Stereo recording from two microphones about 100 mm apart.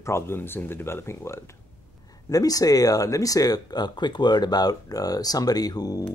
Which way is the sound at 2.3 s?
35° left (ahead or behind).